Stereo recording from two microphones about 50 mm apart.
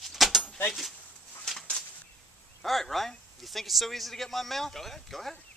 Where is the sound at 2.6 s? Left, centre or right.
Centre.